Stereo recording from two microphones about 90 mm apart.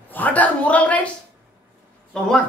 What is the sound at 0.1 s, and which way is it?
A woman's voice, 15° left (ahead or behind).